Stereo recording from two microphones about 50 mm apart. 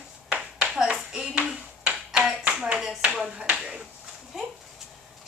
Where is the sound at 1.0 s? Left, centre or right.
Centre.